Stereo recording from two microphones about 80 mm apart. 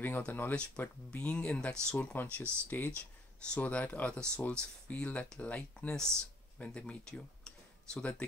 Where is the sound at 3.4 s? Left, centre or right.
Centre.